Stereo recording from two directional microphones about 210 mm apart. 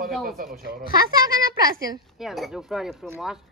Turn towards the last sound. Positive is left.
turn(degrees=-5)  # may be behind; listen again after turning